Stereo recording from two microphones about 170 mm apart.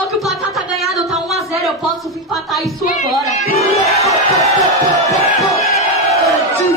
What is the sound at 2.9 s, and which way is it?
Crowd, 45° left (ahead or behind).